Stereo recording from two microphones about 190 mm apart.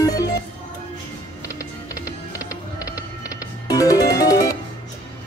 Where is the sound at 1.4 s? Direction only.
15° left (ahead or behind).